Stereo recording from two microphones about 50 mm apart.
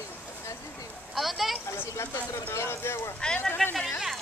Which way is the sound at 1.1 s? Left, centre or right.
Centre.